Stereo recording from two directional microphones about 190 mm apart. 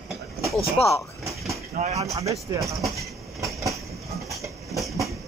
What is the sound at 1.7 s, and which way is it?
Speech, 35° right (ahead or behind).